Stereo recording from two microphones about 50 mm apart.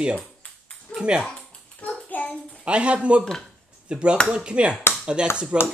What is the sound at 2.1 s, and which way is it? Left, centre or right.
Child singing, left.